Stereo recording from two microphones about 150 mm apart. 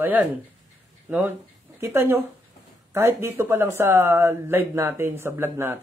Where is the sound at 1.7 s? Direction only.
20° right (ahead or behind).